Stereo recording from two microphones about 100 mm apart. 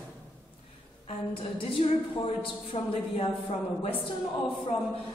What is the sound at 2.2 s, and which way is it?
Speech, 70° left (ahead or behind).